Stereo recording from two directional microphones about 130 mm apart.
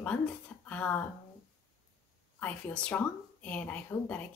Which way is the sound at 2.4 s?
10° left (ahead or behind).